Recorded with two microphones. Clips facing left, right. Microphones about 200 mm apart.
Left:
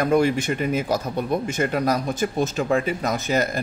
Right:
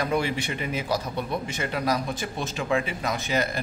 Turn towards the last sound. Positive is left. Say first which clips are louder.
# left 4 dB
turn(degrees=45)  # may be behind; listen again after turning